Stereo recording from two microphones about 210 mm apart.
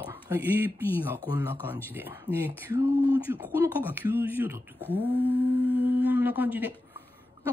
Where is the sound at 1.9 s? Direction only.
10° right (ahead or behind).